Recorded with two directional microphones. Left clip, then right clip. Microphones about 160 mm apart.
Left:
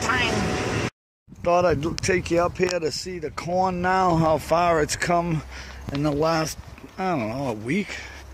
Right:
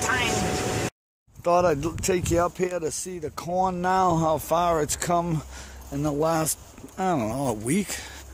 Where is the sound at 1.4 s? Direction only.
15° right (ahead or behind).